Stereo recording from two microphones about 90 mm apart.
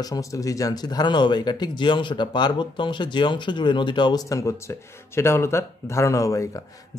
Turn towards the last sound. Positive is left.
turn(degrees=35)  # may be behind; listen again after turning